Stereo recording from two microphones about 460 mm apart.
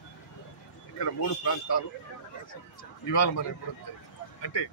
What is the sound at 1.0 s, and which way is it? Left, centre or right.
Speech, left.